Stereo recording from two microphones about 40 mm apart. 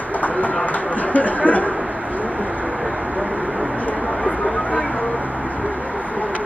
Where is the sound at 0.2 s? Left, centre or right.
Left.